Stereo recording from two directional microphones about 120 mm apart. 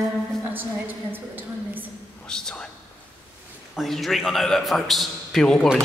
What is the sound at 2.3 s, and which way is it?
Speech, 5° left (ahead or behind).